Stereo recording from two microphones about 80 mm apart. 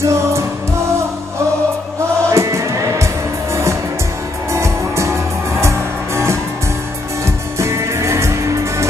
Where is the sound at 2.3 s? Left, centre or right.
Right.